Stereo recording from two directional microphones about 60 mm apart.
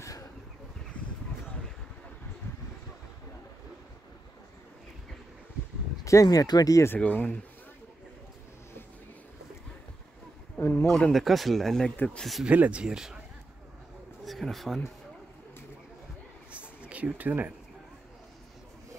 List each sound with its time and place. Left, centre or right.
6.0 s speech: left
7.0 s speech: left
10.6 s a sound: left
10.9 s speech: centre
12.4 s speech: right
12.8 s speech: centre
14.2 s a man's voice: centre
16.9 s speech: right